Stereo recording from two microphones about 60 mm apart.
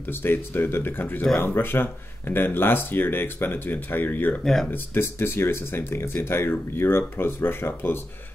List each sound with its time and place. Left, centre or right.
0.1 s speech: left